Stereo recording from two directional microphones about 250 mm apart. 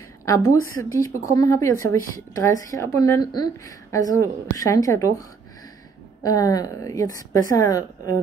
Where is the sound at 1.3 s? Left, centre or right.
Centre.